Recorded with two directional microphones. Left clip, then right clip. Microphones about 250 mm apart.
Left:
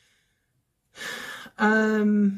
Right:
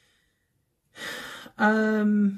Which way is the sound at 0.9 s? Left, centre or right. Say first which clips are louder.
Left 1 dB; centre.